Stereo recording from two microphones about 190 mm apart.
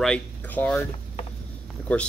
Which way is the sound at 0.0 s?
5° left (ahead or behind).